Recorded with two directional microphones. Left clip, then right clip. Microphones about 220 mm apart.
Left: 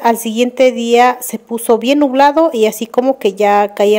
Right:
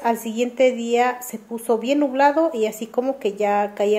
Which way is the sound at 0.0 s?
45° left (ahead or behind).